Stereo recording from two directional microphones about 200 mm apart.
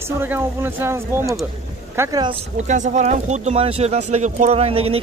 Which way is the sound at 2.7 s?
35° right (ahead or behind).